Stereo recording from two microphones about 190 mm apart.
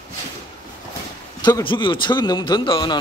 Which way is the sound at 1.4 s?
20° left (ahead or behind).